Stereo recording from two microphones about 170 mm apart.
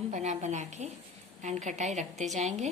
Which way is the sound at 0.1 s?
45° right (ahead or behind).